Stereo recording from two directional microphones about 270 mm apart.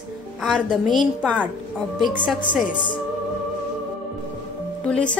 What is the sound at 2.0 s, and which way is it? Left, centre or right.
Speech, centre.